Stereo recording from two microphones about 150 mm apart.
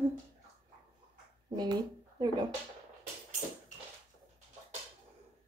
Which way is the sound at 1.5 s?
30° right (ahead or behind).